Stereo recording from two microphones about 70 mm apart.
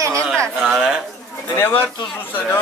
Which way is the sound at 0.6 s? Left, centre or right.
Centre.